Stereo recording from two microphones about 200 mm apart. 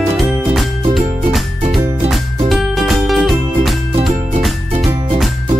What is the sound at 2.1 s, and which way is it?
Music, centre (ahead or behind).